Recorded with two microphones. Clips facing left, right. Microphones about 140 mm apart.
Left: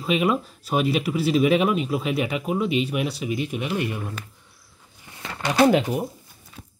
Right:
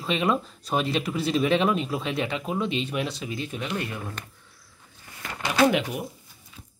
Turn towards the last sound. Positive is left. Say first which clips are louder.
# left 4 dB
turn(degrees=35)  # may be behind; listen again after turning